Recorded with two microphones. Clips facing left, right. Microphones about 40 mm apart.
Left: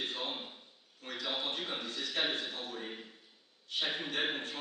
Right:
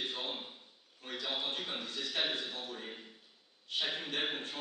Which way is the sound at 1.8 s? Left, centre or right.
Left.